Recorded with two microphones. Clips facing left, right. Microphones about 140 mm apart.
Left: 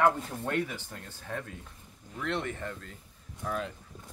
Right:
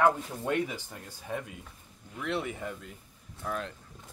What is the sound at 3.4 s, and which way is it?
Speech, centre (ahead or behind).